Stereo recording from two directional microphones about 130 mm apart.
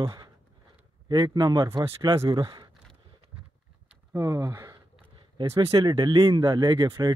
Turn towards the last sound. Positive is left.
turn(degrees=-30)  # may be behind; listen again after turning